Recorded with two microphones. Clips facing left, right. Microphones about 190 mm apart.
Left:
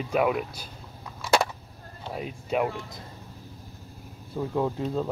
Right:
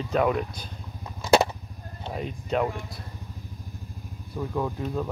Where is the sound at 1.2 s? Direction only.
25° right (ahead or behind).